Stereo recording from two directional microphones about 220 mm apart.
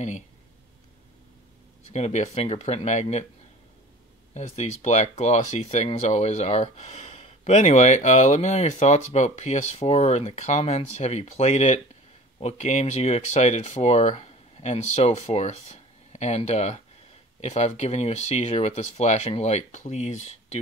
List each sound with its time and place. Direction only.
1.9 s speech: 30° left (ahead or behind)
4.3 s speech: 30° left (ahead or behind)